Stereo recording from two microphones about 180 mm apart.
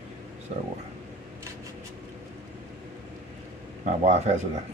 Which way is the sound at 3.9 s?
40° right (ahead or behind).